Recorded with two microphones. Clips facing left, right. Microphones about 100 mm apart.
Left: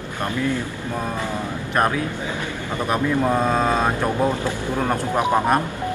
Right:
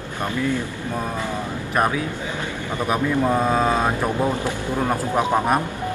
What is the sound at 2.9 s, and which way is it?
Speech, centre (ahead or behind).